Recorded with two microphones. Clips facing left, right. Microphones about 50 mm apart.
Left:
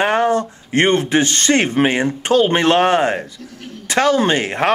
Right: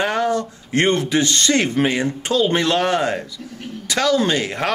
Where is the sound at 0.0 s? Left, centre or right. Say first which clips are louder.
Left 4 dB; left.